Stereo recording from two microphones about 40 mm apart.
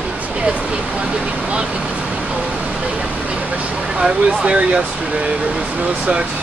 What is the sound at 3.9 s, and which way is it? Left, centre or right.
Speech, right.